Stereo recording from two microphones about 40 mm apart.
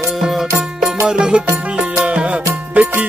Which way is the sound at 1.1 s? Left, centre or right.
Right.